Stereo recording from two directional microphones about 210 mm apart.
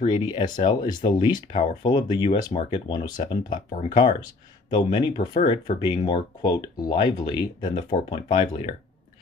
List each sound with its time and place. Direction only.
0.0 s speech: 20° left (ahead or behind)